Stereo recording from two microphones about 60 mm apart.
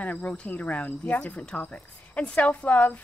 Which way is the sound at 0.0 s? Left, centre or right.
Left.